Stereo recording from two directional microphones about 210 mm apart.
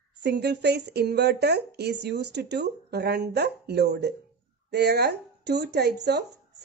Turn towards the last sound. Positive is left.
turn(degrees=-50)  # may be behind; listen again after turning